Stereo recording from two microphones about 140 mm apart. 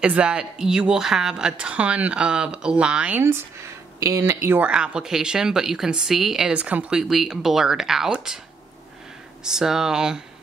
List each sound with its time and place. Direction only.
0.0 s speech: 10° right (ahead or behind)
9.4 s speech: 5° right (ahead or behind)